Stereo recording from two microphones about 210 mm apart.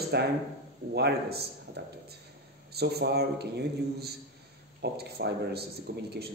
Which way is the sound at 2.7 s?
50° right (ahead or behind).